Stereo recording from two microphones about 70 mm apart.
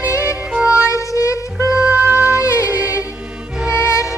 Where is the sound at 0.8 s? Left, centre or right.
Left.